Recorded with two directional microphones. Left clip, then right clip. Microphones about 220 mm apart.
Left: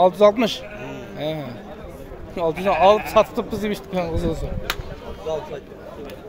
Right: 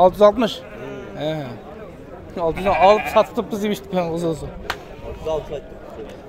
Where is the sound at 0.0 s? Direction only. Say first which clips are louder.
Right 2 dB; 10° right (ahead or behind).